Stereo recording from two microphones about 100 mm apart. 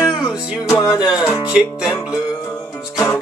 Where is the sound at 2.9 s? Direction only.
30° left (ahead or behind).